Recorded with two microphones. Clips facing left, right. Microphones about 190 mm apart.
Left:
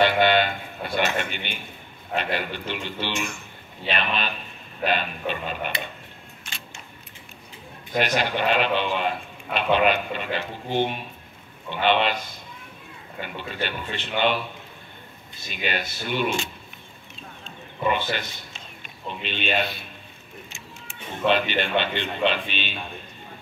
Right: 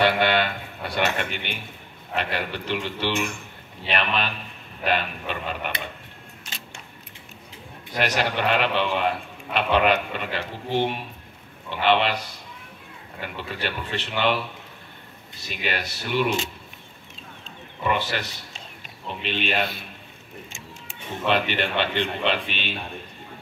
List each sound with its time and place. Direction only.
0.0 s a man's voice: 70° right (ahead or behind)
3.9 s a man's voice: 70° right (ahead or behind)
8.0 s a man's voice: 70° right (ahead or behind)
13.4 s a man's voice: 75° right (ahead or behind)
15.4 s a man's voice: 75° right (ahead or behind)
17.9 s a man's voice: 75° right (ahead or behind)
21.3 s a man's voice: 70° right (ahead or behind)